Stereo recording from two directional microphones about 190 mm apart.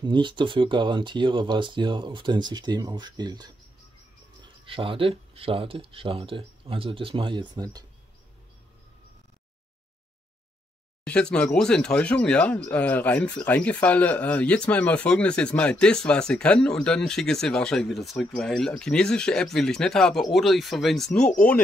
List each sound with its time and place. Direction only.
0.0 s speech: 25° right (ahead or behind)
11.1 s speech: 5° left (ahead or behind)